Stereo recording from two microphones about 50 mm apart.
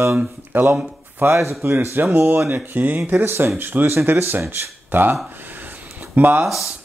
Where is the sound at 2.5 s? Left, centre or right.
Right.